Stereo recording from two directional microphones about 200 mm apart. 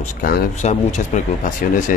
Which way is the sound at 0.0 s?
40° left (ahead or behind).